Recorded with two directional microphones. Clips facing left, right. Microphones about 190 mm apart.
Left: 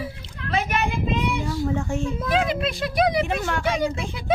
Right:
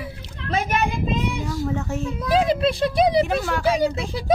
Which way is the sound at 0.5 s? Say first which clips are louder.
Right 2 dB; 45° right (ahead or behind).